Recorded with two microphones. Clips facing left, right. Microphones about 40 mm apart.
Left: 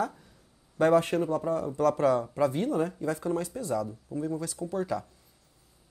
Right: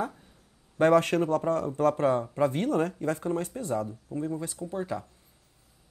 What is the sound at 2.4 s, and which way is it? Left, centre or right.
Speech, right.